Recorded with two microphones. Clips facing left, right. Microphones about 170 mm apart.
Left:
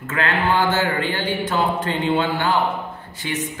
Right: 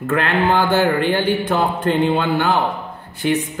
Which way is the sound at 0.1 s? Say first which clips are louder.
Right 3 dB; 55° right (ahead or behind).